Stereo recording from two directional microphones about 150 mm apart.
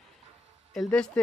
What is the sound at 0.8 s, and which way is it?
Speech, 5° left (ahead or behind).